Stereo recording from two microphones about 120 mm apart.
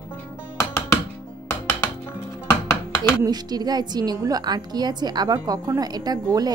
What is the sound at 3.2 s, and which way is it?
A woman's voice, 35° right (ahead or behind).